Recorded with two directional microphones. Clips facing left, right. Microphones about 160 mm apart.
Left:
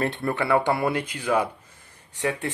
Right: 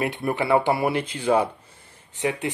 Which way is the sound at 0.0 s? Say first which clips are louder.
Right 1 dB; 20° right (ahead or behind).